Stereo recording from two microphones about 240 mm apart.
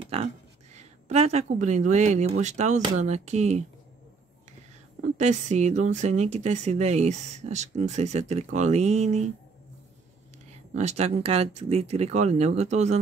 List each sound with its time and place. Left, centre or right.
0.0 s a sound: right
0.7 s speech: right
5.1 s speech: right
10.7 s speech: right